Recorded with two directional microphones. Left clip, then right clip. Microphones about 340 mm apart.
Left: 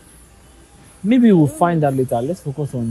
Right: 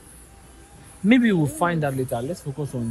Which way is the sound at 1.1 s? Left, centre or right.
Centre.